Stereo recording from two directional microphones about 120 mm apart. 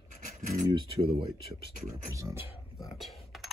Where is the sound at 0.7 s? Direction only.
45° right (ahead or behind).